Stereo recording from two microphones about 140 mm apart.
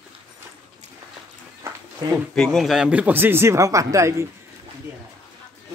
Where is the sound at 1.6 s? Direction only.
20° right (ahead or behind).